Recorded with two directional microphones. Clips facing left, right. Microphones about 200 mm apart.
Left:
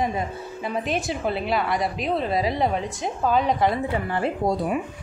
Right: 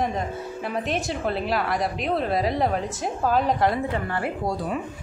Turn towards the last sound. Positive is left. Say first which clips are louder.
# left 3 dB
turn(degrees=20)  # may be behind; listen again after turning